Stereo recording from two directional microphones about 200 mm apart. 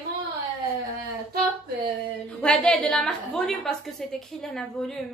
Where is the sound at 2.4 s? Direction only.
5° left (ahead or behind).